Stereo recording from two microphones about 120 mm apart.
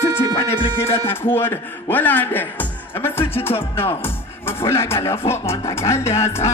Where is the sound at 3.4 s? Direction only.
55° left (ahead or behind).